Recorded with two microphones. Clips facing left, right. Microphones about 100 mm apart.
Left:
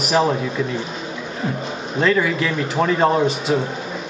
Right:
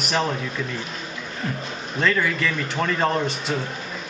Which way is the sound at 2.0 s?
5° left (ahead or behind).